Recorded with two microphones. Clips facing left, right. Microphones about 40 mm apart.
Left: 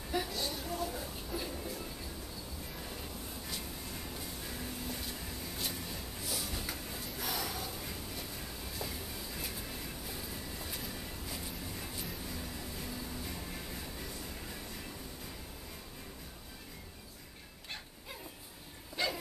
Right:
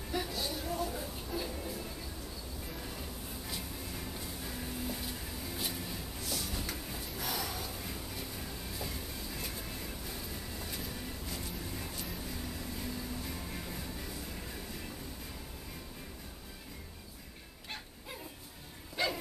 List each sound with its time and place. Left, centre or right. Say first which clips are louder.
0.1 s a sound: even; centre
4.5 s music: right 3 dB; centre
10.6 s vehicle: right 1 dB; centre
12.7 s music: right 2 dB; centre
19.0 s bow-wow: right 2 dB; centre